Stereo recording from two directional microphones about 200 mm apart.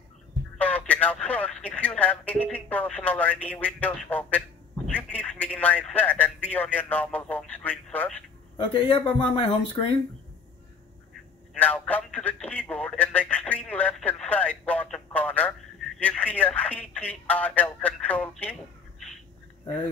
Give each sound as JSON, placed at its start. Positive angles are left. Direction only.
{"t": 0.6, "sound": "speech", "side_deg": 5}
{"t": 8.5, "sound": "speech", "side_deg": 25}
{"t": 11.5, "sound": "speech", "side_deg": 5}